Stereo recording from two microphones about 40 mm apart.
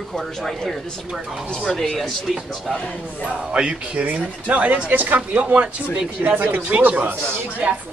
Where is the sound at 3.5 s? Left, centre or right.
Right.